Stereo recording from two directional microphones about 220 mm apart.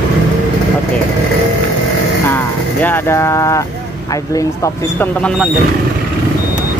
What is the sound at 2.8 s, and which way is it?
Speech, 10° left (ahead or behind).